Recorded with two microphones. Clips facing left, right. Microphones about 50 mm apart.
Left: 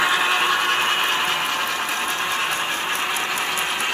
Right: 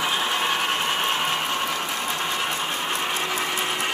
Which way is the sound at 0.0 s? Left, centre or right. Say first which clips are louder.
Left 5 dB; left.